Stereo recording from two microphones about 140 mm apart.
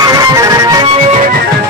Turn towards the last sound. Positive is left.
turn(degrees=-25)  # may be behind; listen again after turning